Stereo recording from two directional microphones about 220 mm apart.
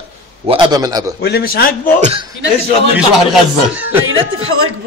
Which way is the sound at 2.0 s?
30° right (ahead or behind).